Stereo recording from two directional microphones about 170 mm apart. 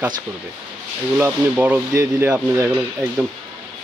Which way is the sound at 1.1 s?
10° right (ahead or behind).